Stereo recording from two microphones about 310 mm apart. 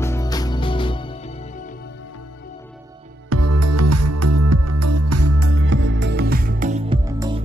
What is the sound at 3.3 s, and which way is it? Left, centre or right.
Music, right.